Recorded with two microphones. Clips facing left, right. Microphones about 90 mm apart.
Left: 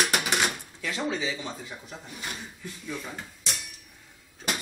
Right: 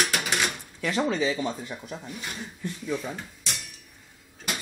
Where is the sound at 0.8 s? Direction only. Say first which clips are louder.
Right 5 dB; 50° right (ahead or behind).